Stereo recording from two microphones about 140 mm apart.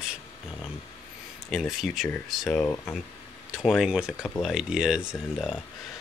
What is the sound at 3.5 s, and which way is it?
Speech, 5° right (ahead or behind).